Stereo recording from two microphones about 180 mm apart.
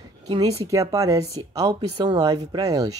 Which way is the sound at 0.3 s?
30° right (ahead or behind).